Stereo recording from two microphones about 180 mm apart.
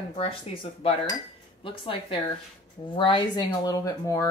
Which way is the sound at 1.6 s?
30° left (ahead or behind).